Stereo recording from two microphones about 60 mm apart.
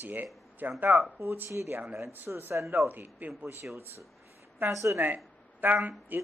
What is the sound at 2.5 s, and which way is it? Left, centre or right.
Speech, right.